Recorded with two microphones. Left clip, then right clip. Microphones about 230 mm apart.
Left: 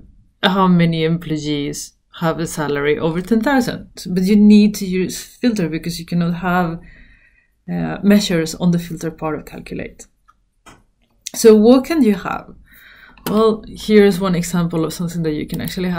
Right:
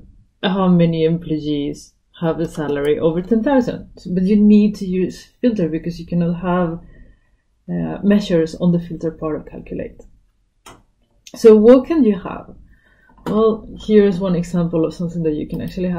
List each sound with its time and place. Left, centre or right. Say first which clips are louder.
0.4 s speech: left 2 dB; centre
7.6 s speech: left 1 dB; centre
11.2 s speech: right 1 dB; centre
13.8 s speech: left 1 dB; centre